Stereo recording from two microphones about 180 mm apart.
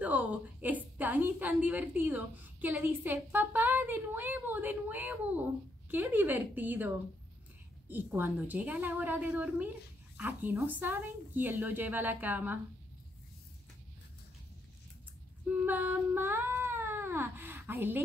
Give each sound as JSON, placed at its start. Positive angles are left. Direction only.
{"t": 0.0, "sound": "a woman's voice", "side_deg": -10}
{"t": 7.9, "sound": "a woman's voice", "side_deg": -10}
{"t": 15.4, "sound": "cat", "side_deg": -10}